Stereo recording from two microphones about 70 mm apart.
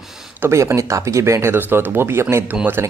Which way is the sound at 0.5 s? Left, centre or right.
Right.